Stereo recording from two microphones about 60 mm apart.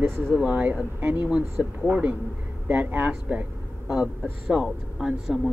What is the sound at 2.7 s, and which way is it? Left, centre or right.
Speech, right.